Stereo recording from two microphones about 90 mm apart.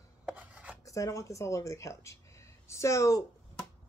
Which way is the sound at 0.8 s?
35° left (ahead or behind).